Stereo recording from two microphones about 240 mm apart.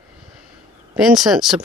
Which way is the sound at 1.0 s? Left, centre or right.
Centre.